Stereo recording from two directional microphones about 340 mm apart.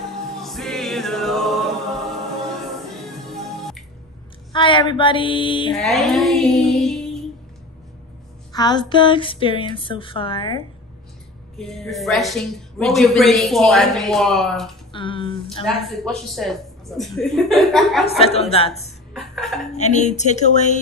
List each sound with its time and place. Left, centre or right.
0.4 s music: centre
3.3 s music: centre
4.5 s speech: centre
5.8 s music: centre
8.5 s speech: centre
11.5 s a woman's voice: centre
14.9 s a sound: centre
15.6 s a woman's voice: centre
18.2 s speech: centre
19.1 s a sound: centre
19.7 s speech: centre